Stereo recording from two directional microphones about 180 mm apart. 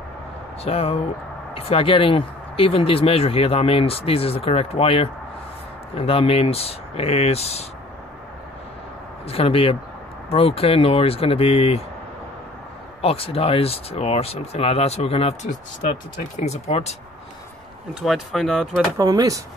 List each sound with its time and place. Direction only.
0.7 s speech: 35° left (ahead or behind)
9.3 s speech: 30° left (ahead or behind)
13.0 s speech: 30° left (ahead or behind)
18.0 s speech: centre (ahead or behind)
18.9 s speech: 20° right (ahead or behind)